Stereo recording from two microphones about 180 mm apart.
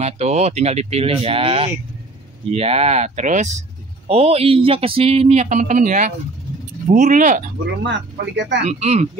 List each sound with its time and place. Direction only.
0.0 s speech: 40° right (ahead or behind)
7.8 s speech: 90° right
8.6 s speech: 35° right (ahead or behind)